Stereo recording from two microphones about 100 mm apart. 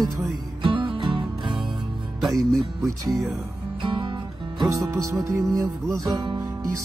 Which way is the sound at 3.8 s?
50° right (ahead or behind).